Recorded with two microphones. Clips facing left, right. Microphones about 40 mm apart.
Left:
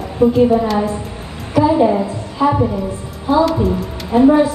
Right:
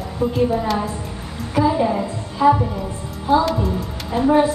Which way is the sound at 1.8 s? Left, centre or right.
Centre.